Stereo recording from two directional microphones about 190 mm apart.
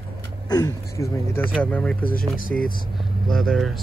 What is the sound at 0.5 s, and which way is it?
Speech, 15° left (ahead or behind).